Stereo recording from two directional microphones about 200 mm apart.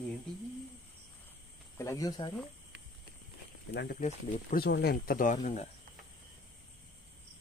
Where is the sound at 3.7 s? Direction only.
55° left (ahead or behind).